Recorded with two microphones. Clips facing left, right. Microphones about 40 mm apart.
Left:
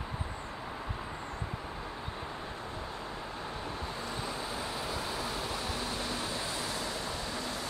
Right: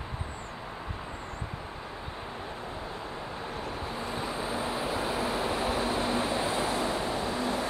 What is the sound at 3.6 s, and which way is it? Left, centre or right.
Vehicle, centre.